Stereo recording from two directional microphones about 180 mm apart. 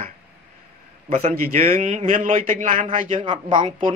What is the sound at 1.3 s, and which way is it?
Speech, 50° right (ahead or behind).